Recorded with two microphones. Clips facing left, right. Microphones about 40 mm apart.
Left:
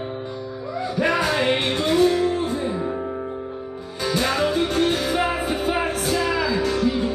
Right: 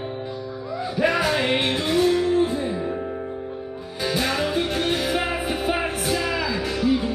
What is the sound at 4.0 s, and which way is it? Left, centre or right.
Music, centre.